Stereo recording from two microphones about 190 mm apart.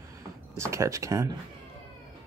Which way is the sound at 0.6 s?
15° right (ahead or behind).